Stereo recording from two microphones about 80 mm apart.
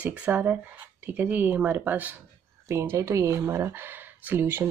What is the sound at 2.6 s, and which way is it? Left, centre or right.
Speech, right.